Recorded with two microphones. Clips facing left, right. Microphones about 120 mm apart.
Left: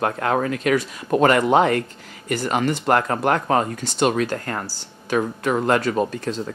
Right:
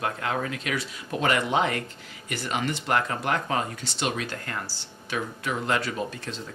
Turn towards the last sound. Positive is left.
turn(degrees=45)  # may be behind; listen again after turning